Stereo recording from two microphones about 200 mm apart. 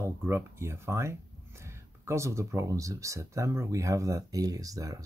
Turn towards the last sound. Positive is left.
turn(degrees=-15)  # may be behind; listen again after turning